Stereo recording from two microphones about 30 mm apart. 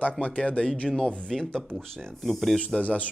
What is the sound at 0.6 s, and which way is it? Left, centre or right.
Speech, left.